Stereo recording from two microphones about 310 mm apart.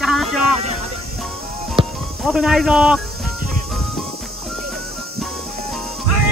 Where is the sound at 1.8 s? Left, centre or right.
Centre.